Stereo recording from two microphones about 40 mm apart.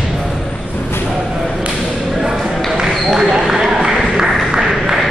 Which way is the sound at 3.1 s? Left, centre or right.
Centre.